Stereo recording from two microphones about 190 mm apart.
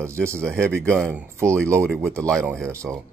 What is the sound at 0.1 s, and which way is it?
Speech, 15° right (ahead or behind).